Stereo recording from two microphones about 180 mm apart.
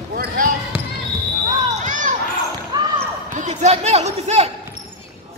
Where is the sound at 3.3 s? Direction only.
40° right (ahead or behind).